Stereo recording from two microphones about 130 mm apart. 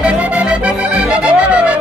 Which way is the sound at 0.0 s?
10° right (ahead or behind).